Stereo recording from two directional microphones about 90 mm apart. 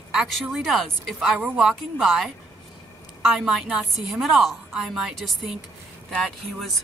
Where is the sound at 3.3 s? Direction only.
5° right (ahead or behind).